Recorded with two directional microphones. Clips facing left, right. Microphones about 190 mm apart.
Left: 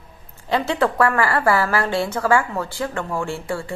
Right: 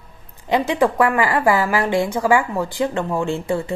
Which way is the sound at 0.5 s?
15° right (ahead or behind).